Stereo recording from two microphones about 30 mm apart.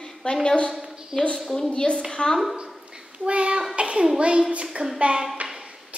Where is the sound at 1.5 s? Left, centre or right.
Left.